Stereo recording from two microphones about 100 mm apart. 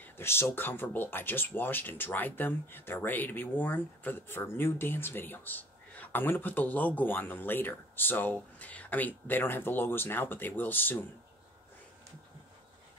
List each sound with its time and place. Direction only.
0.0 s speech: 25° left (ahead or behind)